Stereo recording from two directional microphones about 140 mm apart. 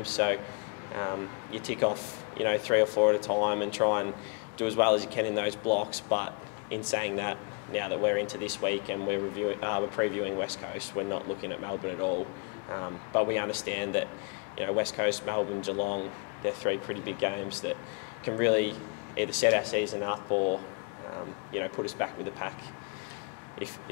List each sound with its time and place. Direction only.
0.2 s a man's voice: 15° left (ahead or behind)
12.7 s a man's voice: 25° left (ahead or behind)
21.5 s speech: 20° left (ahead or behind)